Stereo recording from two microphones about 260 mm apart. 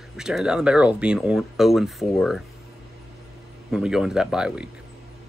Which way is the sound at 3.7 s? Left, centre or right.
Centre.